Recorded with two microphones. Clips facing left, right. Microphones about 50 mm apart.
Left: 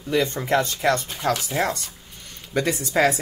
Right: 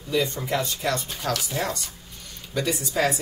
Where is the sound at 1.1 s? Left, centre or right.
Left.